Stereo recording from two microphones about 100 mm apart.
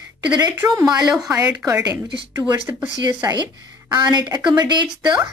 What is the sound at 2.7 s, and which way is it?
Speech, 35° right (ahead or behind).